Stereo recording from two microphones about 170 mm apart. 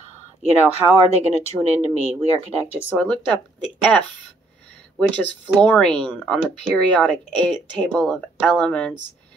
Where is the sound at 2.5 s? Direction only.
15° left (ahead or behind).